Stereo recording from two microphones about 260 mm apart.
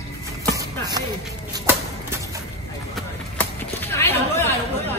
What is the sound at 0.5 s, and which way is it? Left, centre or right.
Music, centre.